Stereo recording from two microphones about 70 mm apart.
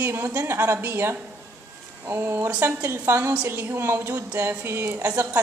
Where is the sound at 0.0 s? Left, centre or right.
Right.